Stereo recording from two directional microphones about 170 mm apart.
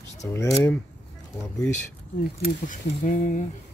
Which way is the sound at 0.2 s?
20° left (ahead or behind).